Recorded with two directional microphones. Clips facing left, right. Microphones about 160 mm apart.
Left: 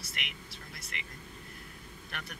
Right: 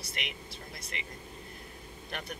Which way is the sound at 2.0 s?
30° right (ahead or behind).